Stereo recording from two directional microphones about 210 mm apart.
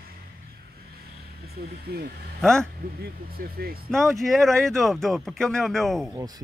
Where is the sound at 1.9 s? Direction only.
45° right (ahead or behind).